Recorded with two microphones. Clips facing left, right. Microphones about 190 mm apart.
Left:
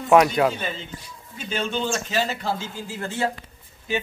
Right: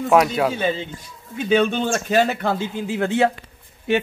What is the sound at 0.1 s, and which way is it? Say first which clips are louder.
Speech: left 1 dB; centre (ahead or behind).